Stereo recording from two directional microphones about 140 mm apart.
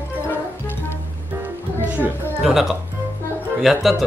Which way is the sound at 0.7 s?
15° left (ahead or behind).